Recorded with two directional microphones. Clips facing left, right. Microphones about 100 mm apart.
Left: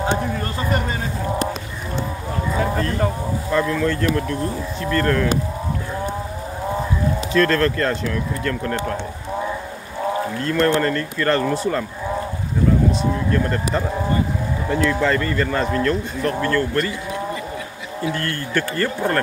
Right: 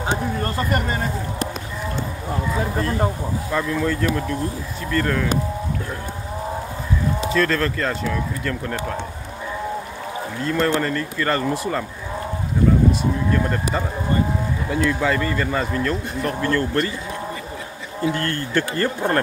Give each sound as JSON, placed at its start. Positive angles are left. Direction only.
{"t": 3.5, "sound": "speech", "side_deg": -10}
{"t": 7.3, "sound": "speech", "side_deg": -5}
{"t": 10.4, "sound": "speech", "side_deg": -5}
{"t": 14.7, "sound": "speech", "side_deg": -10}
{"t": 16.3, "sound": "speech", "side_deg": -20}
{"t": 18.0, "sound": "speech", "side_deg": -25}